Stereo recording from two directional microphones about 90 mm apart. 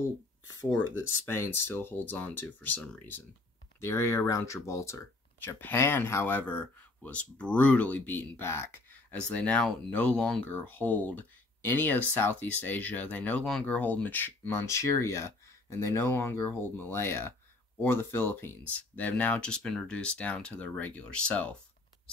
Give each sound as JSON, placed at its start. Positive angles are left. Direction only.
{"t": 0.6, "sound": "speech", "side_deg": 25}
{"t": 3.8, "sound": "speech", "side_deg": 30}
{"t": 9.1, "sound": "speech", "side_deg": 10}